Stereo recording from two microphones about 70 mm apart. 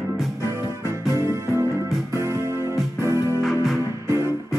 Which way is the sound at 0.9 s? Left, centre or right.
Right.